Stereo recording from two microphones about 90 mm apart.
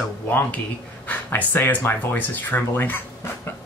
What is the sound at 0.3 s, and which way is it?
Speech, 20° left (ahead or behind).